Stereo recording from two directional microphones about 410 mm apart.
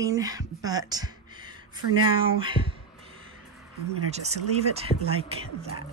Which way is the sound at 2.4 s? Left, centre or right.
Centre.